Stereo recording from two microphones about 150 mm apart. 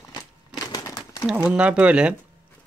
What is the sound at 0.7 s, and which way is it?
Crumpling, 20° left (ahead or behind).